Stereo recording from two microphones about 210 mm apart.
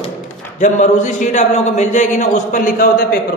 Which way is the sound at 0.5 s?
35° left (ahead or behind).